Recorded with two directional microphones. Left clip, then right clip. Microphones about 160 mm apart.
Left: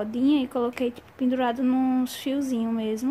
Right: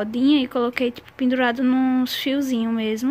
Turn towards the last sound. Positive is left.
turn(degrees=-15)  # may be behind; listen again after turning